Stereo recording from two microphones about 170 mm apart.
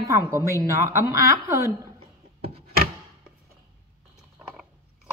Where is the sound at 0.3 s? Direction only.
15° right (ahead or behind).